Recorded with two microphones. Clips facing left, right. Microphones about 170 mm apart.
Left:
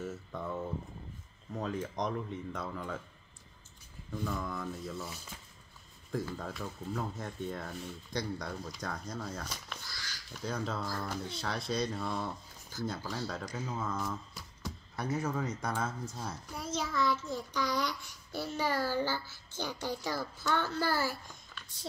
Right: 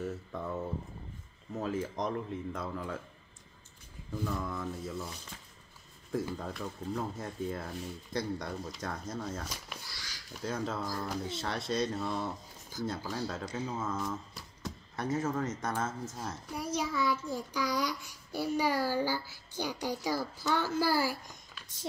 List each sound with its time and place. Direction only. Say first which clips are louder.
0.0 s a sound: right 2 dB; centre (ahead or behind)
1.5 s speech: right 2 dB; 5° right (ahead or behind)
4.1 s speech: right 1 dB; 5° right (ahead or behind)
6.4 s speech: right 2 dB; centre (ahead or behind)
10.8 s a child's voice: right 1 dB; 15° right (ahead or behind)
11.1 s speech: right 2 dB; centre (ahead or behind)
13.5 s speech: right 3 dB; 30° right (ahead or behind)
13.7 s a sound: right 1 dB; 5° right (ahead or behind)
15.1 s speech: right 2 dB; centre (ahead or behind)
16.5 s a child's voice: right 1 dB; 10° right (ahead or behind)